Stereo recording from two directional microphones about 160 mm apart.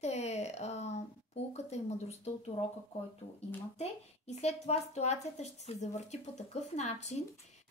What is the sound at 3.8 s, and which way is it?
A woman's voice, 45° left (ahead or behind).